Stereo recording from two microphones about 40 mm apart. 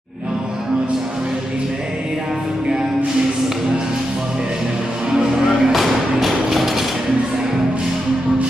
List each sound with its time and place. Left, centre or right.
5.7 s music: centre